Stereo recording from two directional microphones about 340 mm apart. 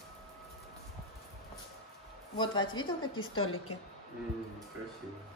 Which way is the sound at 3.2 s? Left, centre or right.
Left.